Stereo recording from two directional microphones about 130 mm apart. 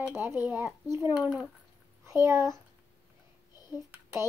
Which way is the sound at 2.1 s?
20° right (ahead or behind).